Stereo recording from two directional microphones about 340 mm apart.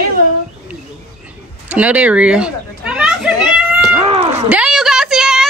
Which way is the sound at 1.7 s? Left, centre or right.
Centre.